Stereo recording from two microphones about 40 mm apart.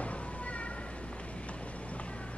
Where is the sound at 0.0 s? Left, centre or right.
Left.